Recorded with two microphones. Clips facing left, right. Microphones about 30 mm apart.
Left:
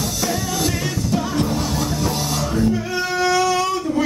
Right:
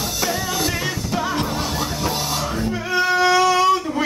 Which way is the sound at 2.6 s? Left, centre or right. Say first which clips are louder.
Left 1 dB; centre.